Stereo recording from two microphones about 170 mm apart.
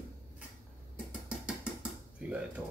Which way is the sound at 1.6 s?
5° right (ahead or behind).